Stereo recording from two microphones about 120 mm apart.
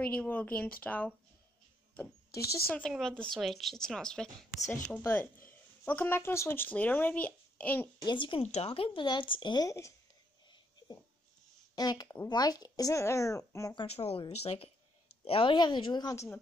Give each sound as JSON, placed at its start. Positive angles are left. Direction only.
{"t": 0.0, "sound": "speech", "side_deg": 10}
{"t": 2.3, "sound": "speech", "side_deg": 25}
{"t": 2.9, "sound": "speech", "side_deg": 5}
{"t": 4.9, "sound": "speech", "side_deg": 20}
{"t": 8.0, "sound": "a woman's voice", "side_deg": 40}
{"t": 8.4, "sound": "speech", "side_deg": 60}
{"t": 9.7, "sound": "speech", "side_deg": 25}
{"t": 11.7, "sound": "speech", "side_deg": 35}
{"t": 13.8, "sound": "a woman's voice", "side_deg": 55}